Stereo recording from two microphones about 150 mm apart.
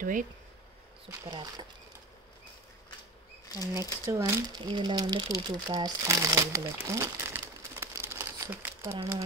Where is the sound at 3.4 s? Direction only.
25° left (ahead or behind).